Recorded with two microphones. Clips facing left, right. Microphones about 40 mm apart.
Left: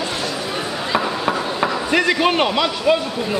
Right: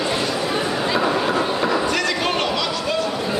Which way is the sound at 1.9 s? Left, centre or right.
Left.